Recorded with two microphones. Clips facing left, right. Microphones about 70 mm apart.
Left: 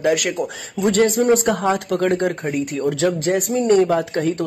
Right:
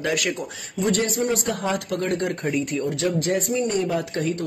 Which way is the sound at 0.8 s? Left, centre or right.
Left.